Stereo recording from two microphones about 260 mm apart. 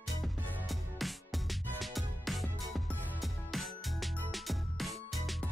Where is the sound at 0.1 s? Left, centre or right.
Centre.